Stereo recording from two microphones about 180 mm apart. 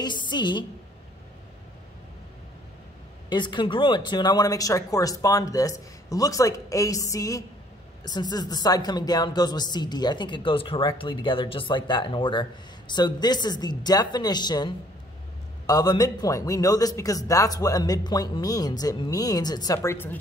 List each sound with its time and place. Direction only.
0.0 s a woman's voice: 25° left (ahead or behind)
3.3 s a man's voice: 25° left (ahead or behind)